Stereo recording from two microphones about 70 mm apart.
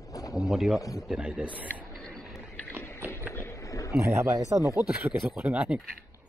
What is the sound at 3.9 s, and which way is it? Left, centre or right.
Speech, right.